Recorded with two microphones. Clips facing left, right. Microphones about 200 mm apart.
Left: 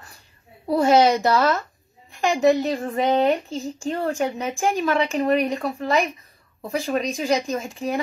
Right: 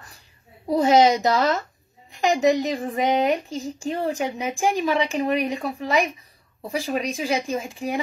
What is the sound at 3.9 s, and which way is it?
Speech, 10° right (ahead or behind).